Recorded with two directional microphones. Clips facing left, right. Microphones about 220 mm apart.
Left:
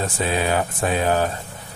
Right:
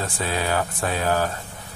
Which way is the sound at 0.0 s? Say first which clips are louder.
Left 4 dB; 20° left (ahead or behind).